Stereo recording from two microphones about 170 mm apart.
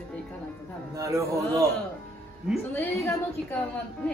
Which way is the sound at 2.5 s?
Centre (ahead or behind).